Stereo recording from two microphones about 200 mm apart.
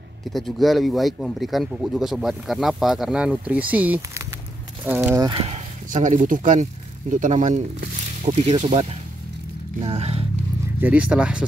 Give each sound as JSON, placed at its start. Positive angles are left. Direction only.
{"t": 0.3, "sound": "speech", "side_deg": 0}
{"t": 5.2, "sound": "speech", "side_deg": -25}
{"t": 5.9, "sound": "speech", "side_deg": -40}
{"t": 8.3, "sound": "speech", "side_deg": -30}
{"t": 10.8, "sound": "speech", "side_deg": -5}